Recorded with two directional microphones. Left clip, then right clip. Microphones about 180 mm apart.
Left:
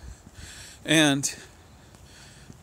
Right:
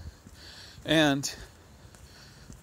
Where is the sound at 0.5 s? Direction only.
15° left (ahead or behind).